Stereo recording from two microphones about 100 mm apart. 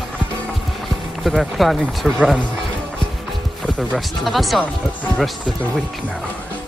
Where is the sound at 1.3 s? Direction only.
Centre (ahead or behind).